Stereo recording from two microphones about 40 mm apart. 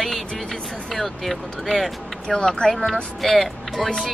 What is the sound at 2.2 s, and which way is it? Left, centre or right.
Speech, centre.